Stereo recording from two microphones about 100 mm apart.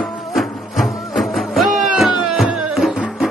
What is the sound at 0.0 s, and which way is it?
Music, centre (ahead or behind).